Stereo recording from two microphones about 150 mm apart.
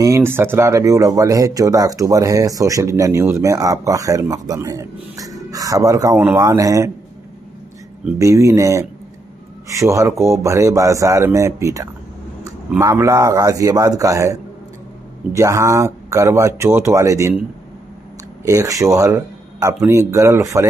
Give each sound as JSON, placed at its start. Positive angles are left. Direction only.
{"t": 0.0, "sound": "speech", "side_deg": -20}
{"t": 8.2, "sound": "speech", "side_deg": -20}
{"t": 18.4, "sound": "speech", "side_deg": -20}